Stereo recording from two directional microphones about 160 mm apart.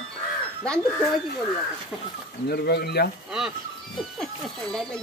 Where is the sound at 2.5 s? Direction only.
90° left.